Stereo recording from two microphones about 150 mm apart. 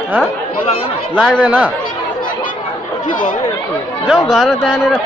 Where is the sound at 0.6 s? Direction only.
40° left (ahead or behind).